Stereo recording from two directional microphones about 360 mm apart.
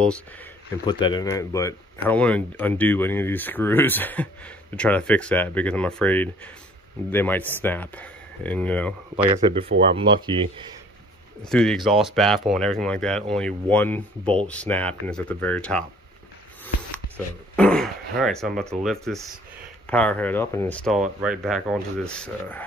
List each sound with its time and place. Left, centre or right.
0.0 s speech: centre
9.1 s speech: centre
11.4 s speech: centre
17.6 s a sound: centre
18.6 s speech: centre